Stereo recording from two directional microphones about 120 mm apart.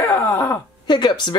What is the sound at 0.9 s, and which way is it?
Speech, 35° left (ahead or behind).